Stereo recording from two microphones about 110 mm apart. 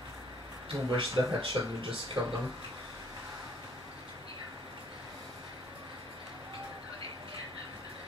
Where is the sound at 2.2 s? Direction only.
10° right (ahead or behind).